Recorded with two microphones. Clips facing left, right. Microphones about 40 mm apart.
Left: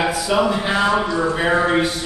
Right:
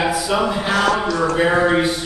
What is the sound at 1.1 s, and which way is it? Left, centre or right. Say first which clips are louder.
Speech: right 1 dB; right.